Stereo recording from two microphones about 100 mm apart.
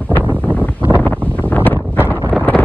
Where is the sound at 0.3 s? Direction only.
20° left (ahead or behind).